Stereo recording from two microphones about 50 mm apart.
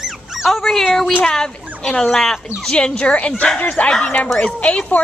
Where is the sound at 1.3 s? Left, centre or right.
Centre.